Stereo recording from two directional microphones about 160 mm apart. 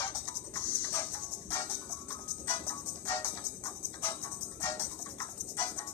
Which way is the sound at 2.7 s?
10° left (ahead or behind).